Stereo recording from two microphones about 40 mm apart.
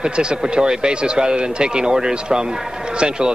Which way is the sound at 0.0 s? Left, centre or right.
Right.